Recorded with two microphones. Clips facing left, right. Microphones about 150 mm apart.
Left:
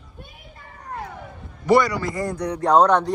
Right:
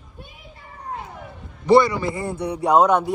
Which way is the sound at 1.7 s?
25° right (ahead or behind).